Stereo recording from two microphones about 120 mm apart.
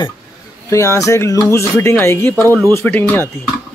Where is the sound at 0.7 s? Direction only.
25° left (ahead or behind).